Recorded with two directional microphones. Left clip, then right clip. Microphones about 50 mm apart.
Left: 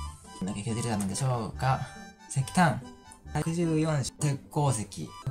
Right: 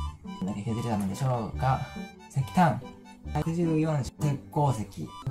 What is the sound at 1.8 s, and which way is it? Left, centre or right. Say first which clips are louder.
Speech: right 3 dB; right.